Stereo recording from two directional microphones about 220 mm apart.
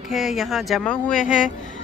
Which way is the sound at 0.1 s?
Centre (ahead or behind).